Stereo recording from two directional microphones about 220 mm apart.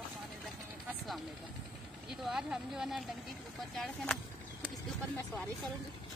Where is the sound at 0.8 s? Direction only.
Centre (ahead or behind).